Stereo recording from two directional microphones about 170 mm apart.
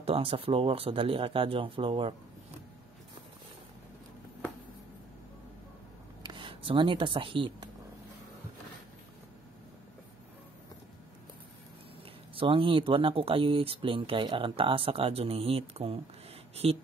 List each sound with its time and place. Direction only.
0.0 s speech: 35° right (ahead or behind)
6.2 s speech: 30° right (ahead or behind)
12.4 s speech: 30° right (ahead or behind)